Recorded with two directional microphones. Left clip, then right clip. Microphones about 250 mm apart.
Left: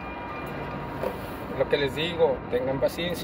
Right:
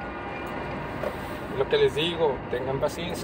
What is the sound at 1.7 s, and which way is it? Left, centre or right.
Speech, centre.